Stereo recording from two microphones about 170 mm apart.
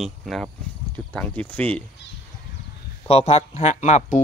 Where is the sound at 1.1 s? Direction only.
10° left (ahead or behind).